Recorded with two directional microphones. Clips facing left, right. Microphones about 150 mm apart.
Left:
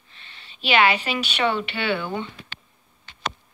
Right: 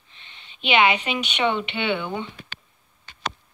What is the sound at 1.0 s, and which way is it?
Speech, 20° right (ahead or behind).